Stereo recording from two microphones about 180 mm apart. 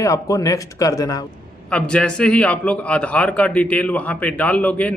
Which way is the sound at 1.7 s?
5° left (ahead or behind).